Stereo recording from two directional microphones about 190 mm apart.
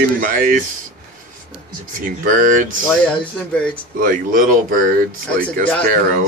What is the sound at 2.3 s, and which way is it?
Speech, 45° right (ahead or behind).